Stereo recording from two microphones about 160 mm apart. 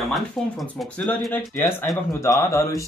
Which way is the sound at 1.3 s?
15° left (ahead or behind).